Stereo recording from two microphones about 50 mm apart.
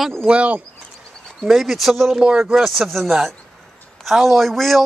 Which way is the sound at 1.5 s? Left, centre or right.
Centre.